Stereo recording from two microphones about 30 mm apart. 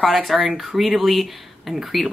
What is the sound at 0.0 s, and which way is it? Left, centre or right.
A woman's voice, centre.